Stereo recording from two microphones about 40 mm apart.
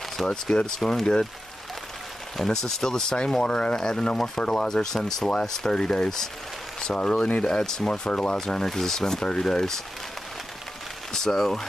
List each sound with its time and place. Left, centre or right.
0.3 s speech: left
0.7 s speech: centre
2.3 s speech: centre
8.2 s speech: centre
11.1 s speech: centre